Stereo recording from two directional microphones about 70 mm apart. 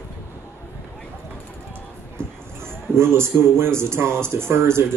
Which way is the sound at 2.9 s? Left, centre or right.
Right.